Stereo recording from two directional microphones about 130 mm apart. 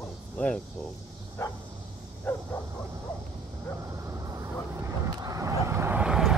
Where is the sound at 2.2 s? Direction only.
10° left (ahead or behind).